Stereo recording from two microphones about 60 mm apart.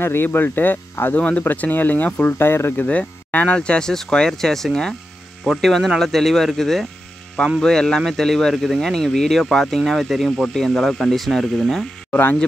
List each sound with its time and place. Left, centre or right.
0.0 s speech: left
2.3 s speech: left
2.9 s speech: left; by 11.8 s centre
12.1 s speech: left